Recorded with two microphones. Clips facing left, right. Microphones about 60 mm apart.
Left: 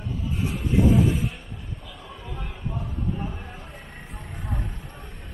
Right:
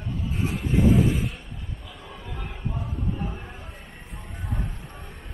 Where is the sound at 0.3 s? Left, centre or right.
Right.